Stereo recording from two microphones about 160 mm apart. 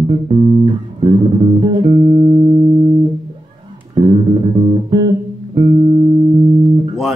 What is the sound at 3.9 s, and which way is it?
Music, 35° right (ahead or behind).